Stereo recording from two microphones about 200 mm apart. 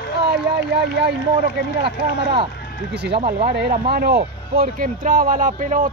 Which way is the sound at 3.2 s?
50° right (ahead or behind).